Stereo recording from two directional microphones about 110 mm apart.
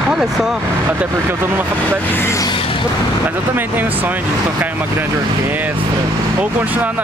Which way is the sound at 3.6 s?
15° right (ahead or behind).